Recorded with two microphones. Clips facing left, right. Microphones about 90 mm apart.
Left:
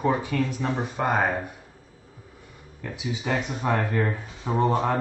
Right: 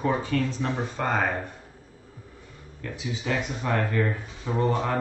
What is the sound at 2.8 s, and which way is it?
Speech, 15° left (ahead or behind).